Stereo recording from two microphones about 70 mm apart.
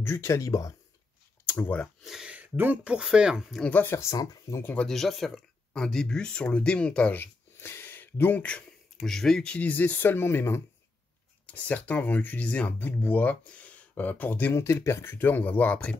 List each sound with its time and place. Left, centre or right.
0.0 s speech: left
1.4 s a sound: left
2.0 s speech: centre
2.3 s a sound: right
2.8 s speech: centre
3.8 s speech: left
4.8 s speech: centre
7.2 s a sound: left
9.0 s speech: centre; by 10.6 s left
11.4 s speech: left
14.5 s speech: left
15.1 s speech: left